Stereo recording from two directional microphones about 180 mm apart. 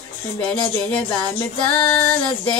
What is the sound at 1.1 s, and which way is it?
Music, 25° left (ahead or behind).